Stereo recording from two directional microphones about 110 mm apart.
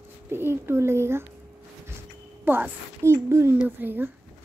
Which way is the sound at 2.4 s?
20° right (ahead or behind).